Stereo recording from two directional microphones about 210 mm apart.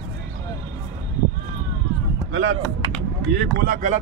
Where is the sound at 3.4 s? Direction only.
45° right (ahead or behind).